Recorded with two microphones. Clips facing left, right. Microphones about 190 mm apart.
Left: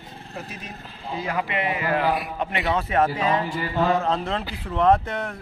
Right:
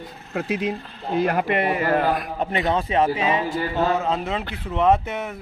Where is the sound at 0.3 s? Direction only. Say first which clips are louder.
Right 13 dB; 80° right; by 2.0 s 45° right (ahead or behind).